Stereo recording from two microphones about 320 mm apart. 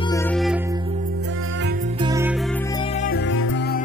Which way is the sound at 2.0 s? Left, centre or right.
Centre.